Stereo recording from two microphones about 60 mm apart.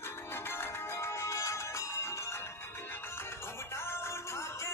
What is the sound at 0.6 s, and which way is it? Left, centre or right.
Music, left.